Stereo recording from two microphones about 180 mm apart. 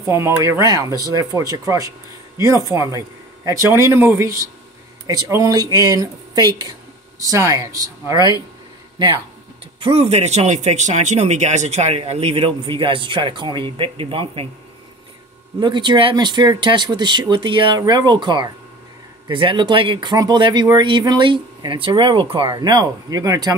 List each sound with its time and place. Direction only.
0.0 s speech: 15° right (ahead or behind); by 14.5 s 30° right (ahead or behind)
15.6 s speech: 25° right (ahead or behind)